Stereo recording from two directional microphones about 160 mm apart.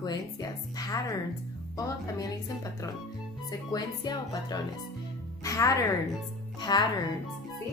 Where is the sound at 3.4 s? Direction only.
25° left (ahead or behind).